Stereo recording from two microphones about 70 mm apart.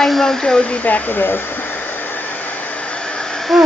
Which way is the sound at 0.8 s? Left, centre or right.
Left.